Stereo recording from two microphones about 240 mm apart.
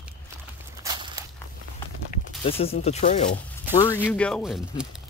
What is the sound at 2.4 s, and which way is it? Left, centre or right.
Speech, left.